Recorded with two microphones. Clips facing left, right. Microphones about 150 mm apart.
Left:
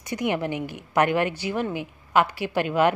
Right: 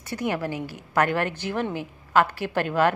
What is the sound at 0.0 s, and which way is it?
A woman's voice, 15° left (ahead or behind).